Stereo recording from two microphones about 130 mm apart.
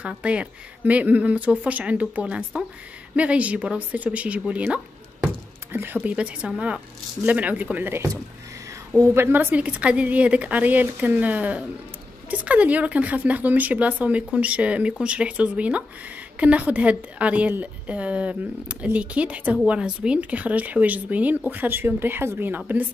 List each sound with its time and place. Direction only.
0.0 s a woman's voice: 10° right (ahead or behind)